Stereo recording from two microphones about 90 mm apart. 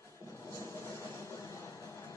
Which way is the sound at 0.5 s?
35° left (ahead or behind).